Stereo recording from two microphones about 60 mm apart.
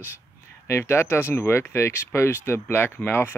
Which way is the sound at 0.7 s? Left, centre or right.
Left.